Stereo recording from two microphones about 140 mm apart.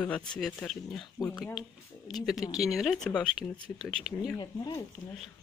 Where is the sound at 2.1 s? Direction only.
Centre (ahead or behind).